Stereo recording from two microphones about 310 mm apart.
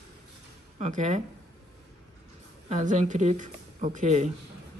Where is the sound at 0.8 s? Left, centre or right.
Right.